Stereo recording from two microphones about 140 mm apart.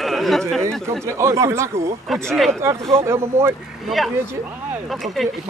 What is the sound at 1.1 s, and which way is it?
Speech, 20° right (ahead or behind).